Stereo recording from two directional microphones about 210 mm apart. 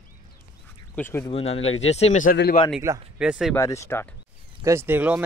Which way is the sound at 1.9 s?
30° left (ahead or behind).